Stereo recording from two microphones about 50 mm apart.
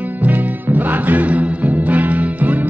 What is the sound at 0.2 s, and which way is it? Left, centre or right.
Music, right.